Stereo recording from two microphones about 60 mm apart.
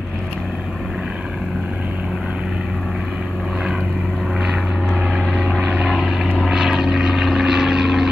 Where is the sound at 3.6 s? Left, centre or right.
Centre.